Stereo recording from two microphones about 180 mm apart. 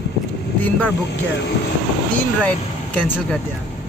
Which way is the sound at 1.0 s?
70° left (ahead or behind).